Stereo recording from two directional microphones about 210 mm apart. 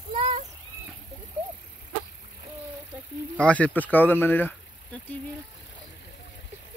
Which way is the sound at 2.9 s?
5° right (ahead or behind).